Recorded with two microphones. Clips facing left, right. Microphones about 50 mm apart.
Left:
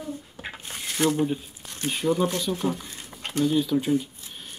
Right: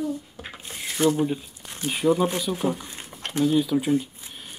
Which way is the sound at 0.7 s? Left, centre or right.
Left.